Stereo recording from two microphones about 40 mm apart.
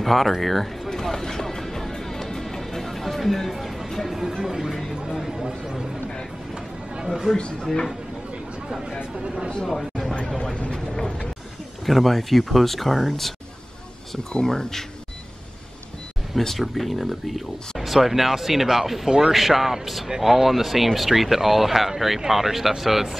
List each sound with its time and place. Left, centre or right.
0.0 s speech: centre
0.8 s music: centre
3.9 s speech: centre
5.0 s a sound: centre
9.7 s a sound: centre
10.5 s speech: left
10.9 s speech: centre
11.8 s speech: centre
14.3 s speech: centre
16.3 s speech: centre
19.3 s speech: centre